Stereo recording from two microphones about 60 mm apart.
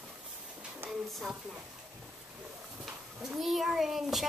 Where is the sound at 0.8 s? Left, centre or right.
Right.